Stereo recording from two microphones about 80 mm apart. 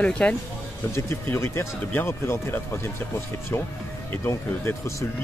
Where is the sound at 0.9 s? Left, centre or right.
Left.